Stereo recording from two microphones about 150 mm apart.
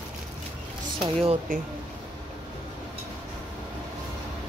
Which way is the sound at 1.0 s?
40° right (ahead or behind).